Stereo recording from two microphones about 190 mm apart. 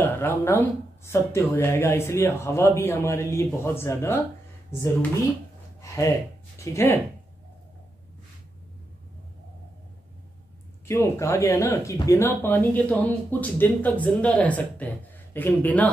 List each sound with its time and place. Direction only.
0.0 s speech: 15° left (ahead or behind)
5.8 s speech: 15° left (ahead or behind)
10.9 s speech: 15° left (ahead or behind)